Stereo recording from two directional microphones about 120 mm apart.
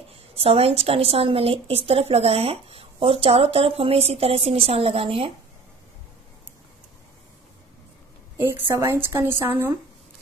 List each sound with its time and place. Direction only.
0.1 s a woman's voice: 55° right (ahead or behind)
8.5 s a woman's voice: 20° right (ahead or behind)